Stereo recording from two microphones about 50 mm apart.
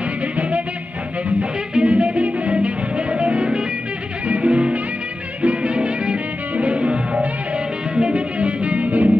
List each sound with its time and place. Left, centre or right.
1.7 s music: right